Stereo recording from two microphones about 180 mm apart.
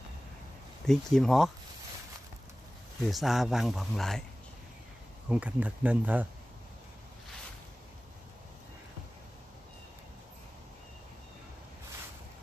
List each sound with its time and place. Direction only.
0.8 s speech: centre (ahead or behind)
3.1 s speech: centre (ahead or behind)
5.3 s speech: 10° right (ahead or behind)